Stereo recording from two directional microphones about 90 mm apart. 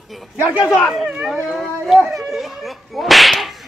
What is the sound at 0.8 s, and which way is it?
Speech, centre (ahead or behind).